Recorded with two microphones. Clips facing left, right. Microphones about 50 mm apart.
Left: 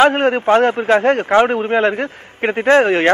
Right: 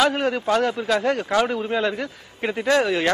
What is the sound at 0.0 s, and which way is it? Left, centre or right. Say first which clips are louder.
A man's voice: left 8 dB; left.